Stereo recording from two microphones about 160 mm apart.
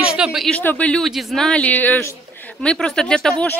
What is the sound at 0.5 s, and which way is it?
Speech, 10° left (ahead or behind).